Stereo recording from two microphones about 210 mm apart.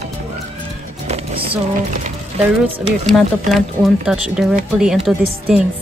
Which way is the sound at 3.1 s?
Centre (ahead or behind).